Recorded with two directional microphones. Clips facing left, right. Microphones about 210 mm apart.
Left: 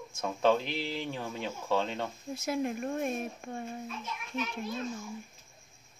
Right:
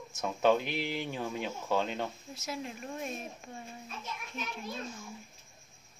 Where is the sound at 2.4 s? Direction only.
55° left (ahead or behind).